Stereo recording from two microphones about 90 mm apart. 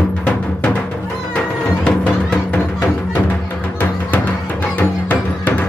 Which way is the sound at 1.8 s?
15° left (ahead or behind).